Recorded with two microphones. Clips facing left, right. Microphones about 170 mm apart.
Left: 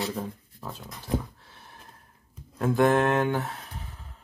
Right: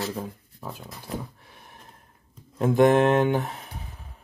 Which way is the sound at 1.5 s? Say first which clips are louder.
Right 1 dB; 15° right (ahead or behind).